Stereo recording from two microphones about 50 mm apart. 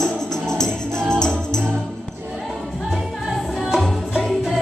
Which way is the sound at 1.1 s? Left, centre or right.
Centre.